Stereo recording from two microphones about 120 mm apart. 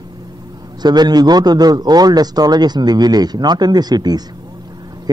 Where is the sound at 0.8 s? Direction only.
35° right (ahead or behind).